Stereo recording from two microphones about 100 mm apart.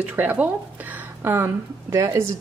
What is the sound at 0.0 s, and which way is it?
Speech, 15° right (ahead or behind).